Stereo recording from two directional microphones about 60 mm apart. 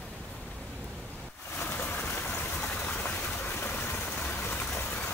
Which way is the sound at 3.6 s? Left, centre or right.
Left.